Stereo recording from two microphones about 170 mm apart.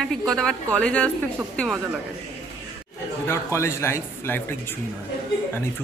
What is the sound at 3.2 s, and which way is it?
A man's voice, 15° left (ahead or behind).